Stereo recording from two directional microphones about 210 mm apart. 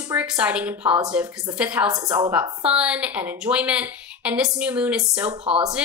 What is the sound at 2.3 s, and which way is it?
A woman's voice, 5° right (ahead or behind).